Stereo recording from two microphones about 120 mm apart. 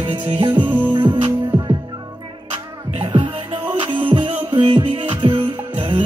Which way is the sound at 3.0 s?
40° right (ahead or behind).